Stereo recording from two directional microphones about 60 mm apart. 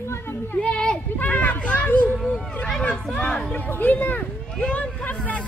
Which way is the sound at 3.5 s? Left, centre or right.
Left.